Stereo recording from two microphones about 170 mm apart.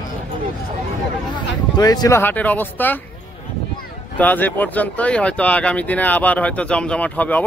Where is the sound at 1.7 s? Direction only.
25° left (ahead or behind).